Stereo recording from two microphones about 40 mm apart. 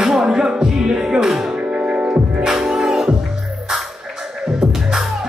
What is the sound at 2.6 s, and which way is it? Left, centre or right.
Music, centre.